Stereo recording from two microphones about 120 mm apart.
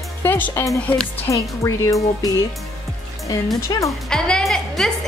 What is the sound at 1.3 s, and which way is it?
Speech, 25° left (ahead or behind).